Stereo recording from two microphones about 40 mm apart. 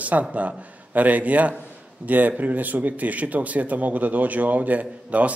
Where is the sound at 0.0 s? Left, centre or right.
Right.